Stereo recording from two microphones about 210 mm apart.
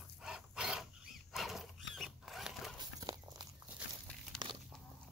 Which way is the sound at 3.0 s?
20° right (ahead or behind).